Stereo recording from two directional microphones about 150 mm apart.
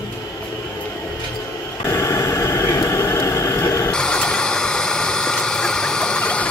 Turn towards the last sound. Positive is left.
turn(degrees=5)  # may be behind; listen again after turning